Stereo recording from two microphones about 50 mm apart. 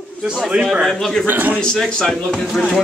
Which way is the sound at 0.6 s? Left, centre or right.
Centre.